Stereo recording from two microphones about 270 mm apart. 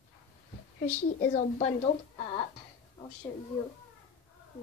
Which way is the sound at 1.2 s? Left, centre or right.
Left.